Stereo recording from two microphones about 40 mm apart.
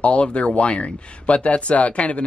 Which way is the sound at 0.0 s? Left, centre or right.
Left.